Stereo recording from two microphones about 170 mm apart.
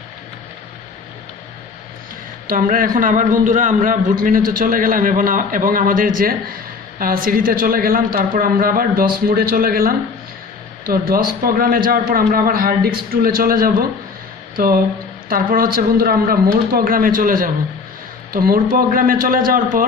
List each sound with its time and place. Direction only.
2.4 s a man's voice: 55° right (ahead or behind)